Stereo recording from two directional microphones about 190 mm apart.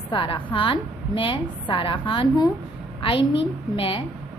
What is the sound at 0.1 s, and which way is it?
A woman's voice, 25° left (ahead or behind).